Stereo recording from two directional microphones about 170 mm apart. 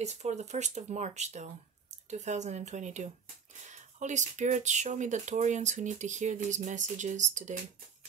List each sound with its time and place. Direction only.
0.0 s speech: 40° right (ahead or behind)